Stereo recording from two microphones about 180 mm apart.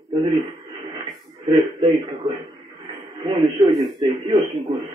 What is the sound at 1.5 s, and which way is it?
Speech, 20° right (ahead or behind).